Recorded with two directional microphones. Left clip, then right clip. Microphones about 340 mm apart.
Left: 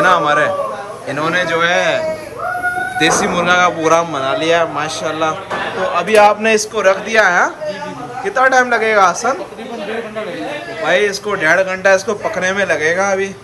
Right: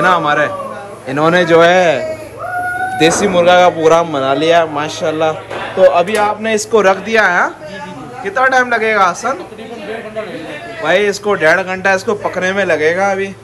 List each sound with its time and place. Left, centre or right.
0.0 s a man's voice: centre
6.7 s a man's voice: centre
10.8 s a man's voice: centre